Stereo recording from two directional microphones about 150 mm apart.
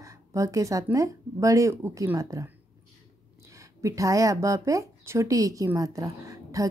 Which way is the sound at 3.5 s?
20° right (ahead or behind).